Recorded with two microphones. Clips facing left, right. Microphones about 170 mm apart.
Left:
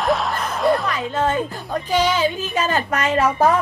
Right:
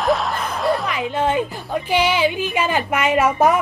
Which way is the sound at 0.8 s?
15° right (ahead or behind).